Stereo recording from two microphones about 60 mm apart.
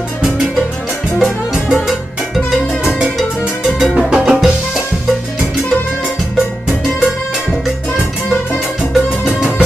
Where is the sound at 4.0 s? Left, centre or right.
Centre.